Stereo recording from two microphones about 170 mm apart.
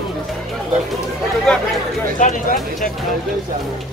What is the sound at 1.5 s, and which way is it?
Speech, 5° left (ahead or behind).